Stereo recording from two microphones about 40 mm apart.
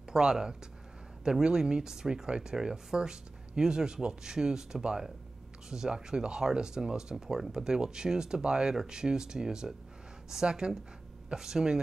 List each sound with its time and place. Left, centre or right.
0.1 s speech: centre